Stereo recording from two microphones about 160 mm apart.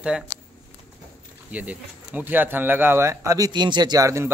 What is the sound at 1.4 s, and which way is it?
Speech, 10° right (ahead or behind).